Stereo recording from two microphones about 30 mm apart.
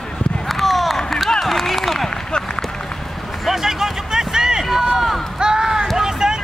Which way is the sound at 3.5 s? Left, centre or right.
Centre.